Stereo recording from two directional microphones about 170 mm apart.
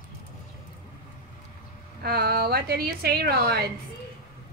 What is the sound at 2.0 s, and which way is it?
A woman's voice, 65° right (ahead or behind).